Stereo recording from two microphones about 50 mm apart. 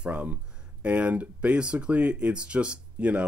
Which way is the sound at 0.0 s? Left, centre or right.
Right.